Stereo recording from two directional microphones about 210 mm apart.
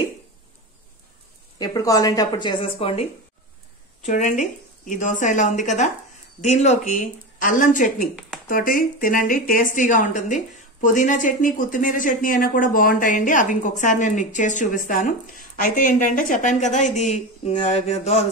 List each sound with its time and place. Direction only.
1.6 s a woman's voice: 15° left (ahead or behind)